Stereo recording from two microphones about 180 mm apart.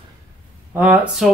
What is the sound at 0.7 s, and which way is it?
Speech, 10° right (ahead or behind).